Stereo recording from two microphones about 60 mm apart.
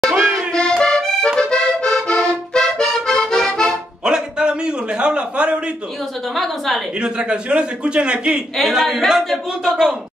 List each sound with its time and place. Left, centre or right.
0.1 s music: centre
0.5 s music: centre
0.8 s accordion: centre
4.0 s a sound: centre
6.3 s a woman's voice: centre
7.0 s a man's voice: centre
8.5 s a woman's voice: centre